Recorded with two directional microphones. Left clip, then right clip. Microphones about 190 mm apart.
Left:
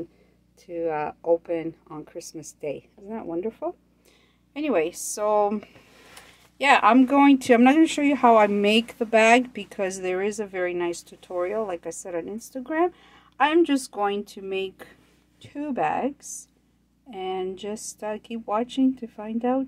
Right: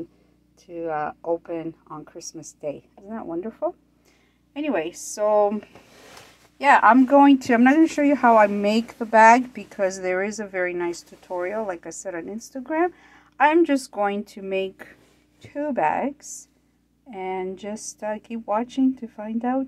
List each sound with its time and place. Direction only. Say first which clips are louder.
0.7 s speech: even; 10° left (ahead or behind)
4.6 s speech: left 2 dB; 25° left (ahead or behind)
6.6 s a woman's voice: right 2 dB; 15° left (ahead or behind)